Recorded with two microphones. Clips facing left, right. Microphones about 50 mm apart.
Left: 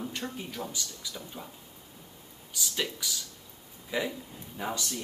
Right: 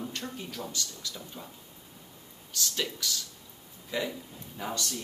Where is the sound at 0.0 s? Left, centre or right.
Centre.